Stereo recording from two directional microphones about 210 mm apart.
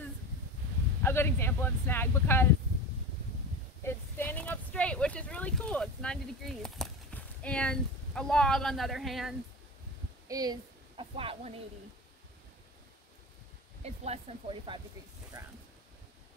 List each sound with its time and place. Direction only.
1.0 s speech: 10° left (ahead or behind)
3.8 s speech: 10° left (ahead or behind)
10.2 s speech: 15° right (ahead or behind)
13.8 s speech: 30° right (ahead or behind)